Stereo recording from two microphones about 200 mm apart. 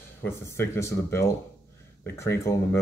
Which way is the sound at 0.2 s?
15° left (ahead or behind).